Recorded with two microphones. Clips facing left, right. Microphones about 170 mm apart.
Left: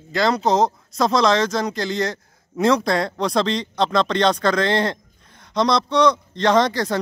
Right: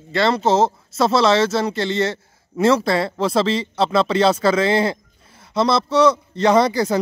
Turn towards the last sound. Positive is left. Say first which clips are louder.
# right 2 dB
turn(degrees=-10)  # may be behind; listen again after turning